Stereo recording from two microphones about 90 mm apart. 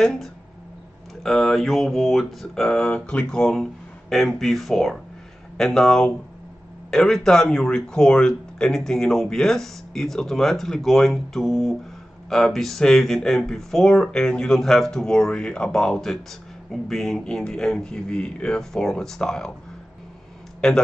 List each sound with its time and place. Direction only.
0.0 s speech: 5° left (ahead or behind)
20.6 s speech: 5° left (ahead or behind)